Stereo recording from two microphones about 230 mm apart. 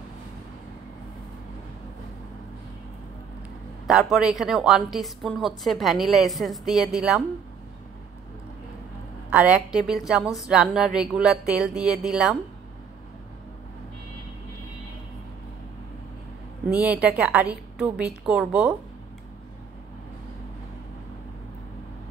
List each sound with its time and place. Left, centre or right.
3.8 s a woman's voice: centre
9.3 s a woman's voice: centre
16.7 s a woman's voice: centre